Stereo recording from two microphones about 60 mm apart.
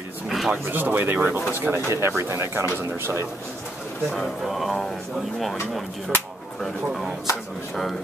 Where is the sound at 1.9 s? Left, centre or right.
Right.